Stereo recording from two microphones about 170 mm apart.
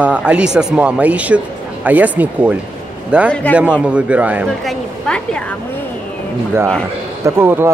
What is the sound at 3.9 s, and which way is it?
Speech, 5° right (ahead or behind).